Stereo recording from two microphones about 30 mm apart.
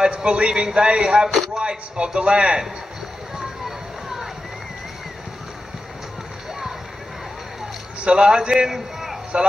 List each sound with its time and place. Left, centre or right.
0.0 s a man's voice: right
1.3 s speech: centre
1.6 s a man's voice: right
8.0 s a man's voice: right; by 9.2 s centre